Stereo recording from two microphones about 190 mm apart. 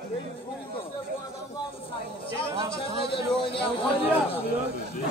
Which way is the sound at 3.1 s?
25° left (ahead or behind).